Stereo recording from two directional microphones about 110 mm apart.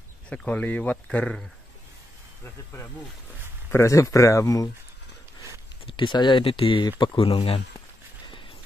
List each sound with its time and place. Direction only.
0.3 s speech: 10° left (ahead or behind)
3.7 s speech: 30° left (ahead or behind)
5.9 s speech: 45° left (ahead or behind)